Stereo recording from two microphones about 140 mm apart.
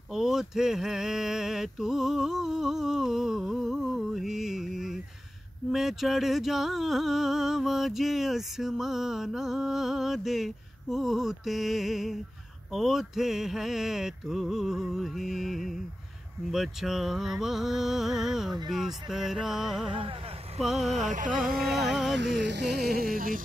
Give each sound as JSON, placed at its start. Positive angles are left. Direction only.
{"t": 0.1, "sound": "a sound", "side_deg": -5}
{"t": 5.7, "sound": "music", "side_deg": 0}
{"t": 19.9, "sound": "a sound", "side_deg": -40}
{"t": 20.6, "sound": "music", "side_deg": 0}
{"t": 20.9, "sound": "music", "side_deg": -60}
{"t": 22.8, "sound": "music", "side_deg": -90}